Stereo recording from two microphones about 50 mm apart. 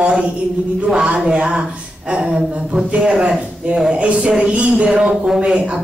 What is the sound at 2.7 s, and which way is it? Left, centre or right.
A woman's voice, centre.